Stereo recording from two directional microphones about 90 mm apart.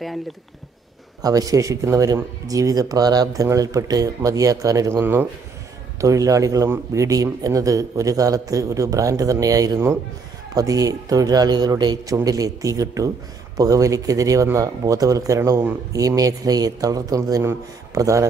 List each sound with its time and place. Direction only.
1.2 s a man's voice: 40° right (ahead or behind)